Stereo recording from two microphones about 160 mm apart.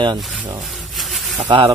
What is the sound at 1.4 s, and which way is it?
Speech, 35° right (ahead or behind).